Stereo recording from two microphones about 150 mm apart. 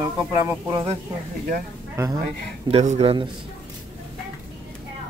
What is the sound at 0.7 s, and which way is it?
Speech, 40° right (ahead or behind).